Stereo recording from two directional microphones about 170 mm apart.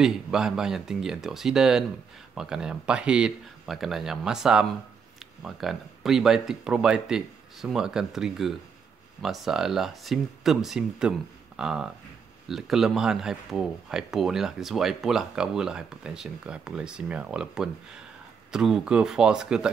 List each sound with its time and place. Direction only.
0.0 s speech: 5° right (ahead or behind)